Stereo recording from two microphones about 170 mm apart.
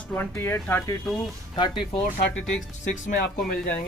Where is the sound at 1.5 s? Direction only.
30° left (ahead or behind).